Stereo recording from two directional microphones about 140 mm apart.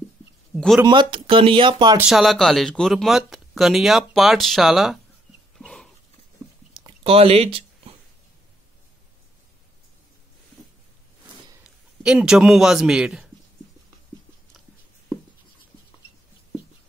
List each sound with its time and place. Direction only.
0.8 s speech: 35° right (ahead or behind)
2.0 s speech: 5° right (ahead or behind)
5.6 s dog: 5° left (ahead or behind)
7.0 s a sound: 45° right (ahead or behind)
12.0 s speech: 5° right (ahead or behind)